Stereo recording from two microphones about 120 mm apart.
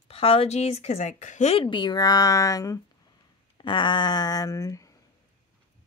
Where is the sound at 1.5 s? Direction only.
45° left (ahead or behind).